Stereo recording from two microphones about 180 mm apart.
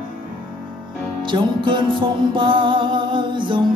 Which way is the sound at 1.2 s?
25° right (ahead or behind).